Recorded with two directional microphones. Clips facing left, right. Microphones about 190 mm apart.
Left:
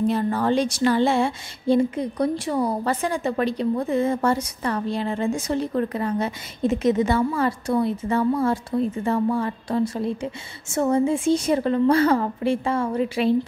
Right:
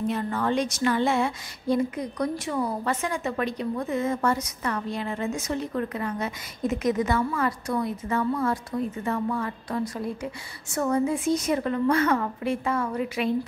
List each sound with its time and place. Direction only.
0.0 s speech: 35° left (ahead or behind)